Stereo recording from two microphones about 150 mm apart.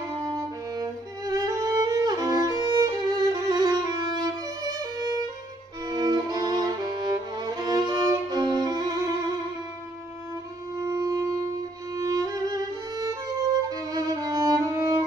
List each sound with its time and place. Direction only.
0.3 s music: 25° right (ahead or behind)
5.9 s violin: 25° right (ahead or behind)
10.8 s wind instrument: 20° right (ahead or behind)
11.9 s music: 25° right (ahead or behind)